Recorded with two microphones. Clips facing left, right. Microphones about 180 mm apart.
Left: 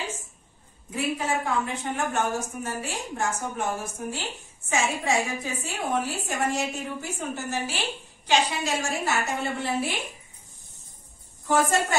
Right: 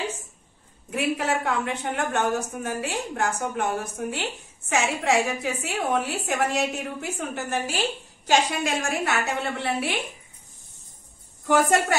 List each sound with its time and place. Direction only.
0.8 s a woman's voice: 70° right (ahead or behind)
11.4 s a woman's voice: 70° right (ahead or behind)